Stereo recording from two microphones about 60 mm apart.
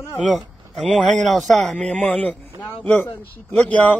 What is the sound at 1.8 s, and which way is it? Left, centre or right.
Speech, centre.